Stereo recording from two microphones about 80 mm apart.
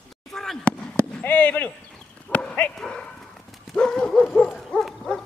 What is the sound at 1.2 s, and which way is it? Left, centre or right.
Basketball bounce, centre.